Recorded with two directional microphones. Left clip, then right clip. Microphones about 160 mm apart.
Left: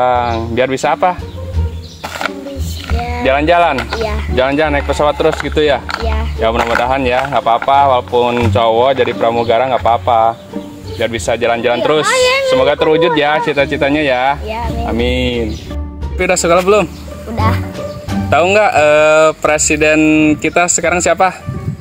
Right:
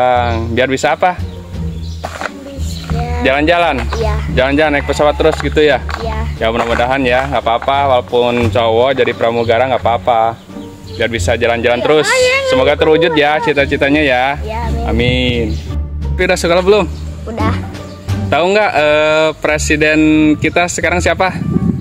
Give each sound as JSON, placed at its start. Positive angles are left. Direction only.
{"t": 0.0, "sound": "speech", "side_deg": -25}
{"t": 3.3, "sound": "speech", "side_deg": -25}
{"t": 12.1, "sound": "a sound", "side_deg": 0}
{"t": 12.4, "sound": "speech", "side_deg": -30}
{"t": 18.3, "sound": "speech", "side_deg": -25}